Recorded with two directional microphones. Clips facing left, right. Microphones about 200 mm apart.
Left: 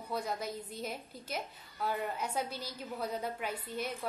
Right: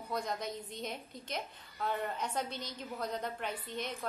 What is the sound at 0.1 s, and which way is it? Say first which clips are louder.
A woman's voice: left 1 dB; 5° left (ahead or behind).